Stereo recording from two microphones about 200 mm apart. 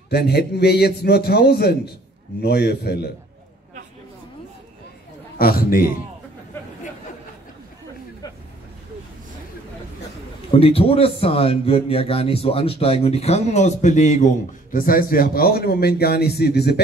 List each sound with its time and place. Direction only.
0.1 s a man's voice: 55° left (ahead or behind)
5.4 s a man's voice: 50° left (ahead or behind)
10.5 s a man's voice: 30° left (ahead or behind); by 16.8 s 55° left (ahead or behind)